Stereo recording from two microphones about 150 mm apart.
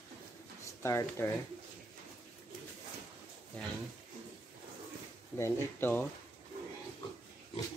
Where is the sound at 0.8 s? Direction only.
20° left (ahead or behind).